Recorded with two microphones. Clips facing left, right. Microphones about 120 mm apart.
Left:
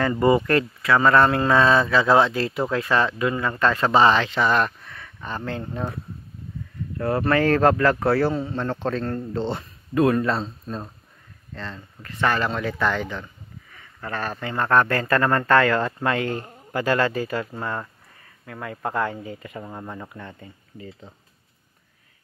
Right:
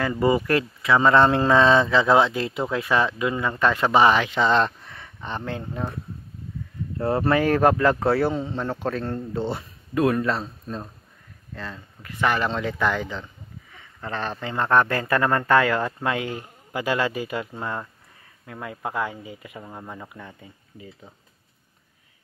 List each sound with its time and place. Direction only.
0.0 s speech: centre (ahead or behind); by 5.4 s 20° right (ahead or behind)
5.4 s speech: 10° right (ahead or behind)
7.0 s speech: 25° right (ahead or behind); by 10.4 s centre (ahead or behind)
11.5 s speech: 10° right (ahead or behind)